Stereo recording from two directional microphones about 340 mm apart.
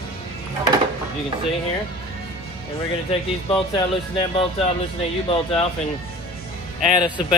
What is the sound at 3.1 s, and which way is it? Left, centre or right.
Speech, centre.